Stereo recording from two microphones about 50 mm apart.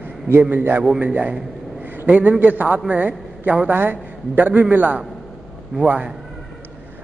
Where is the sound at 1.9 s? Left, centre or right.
Right.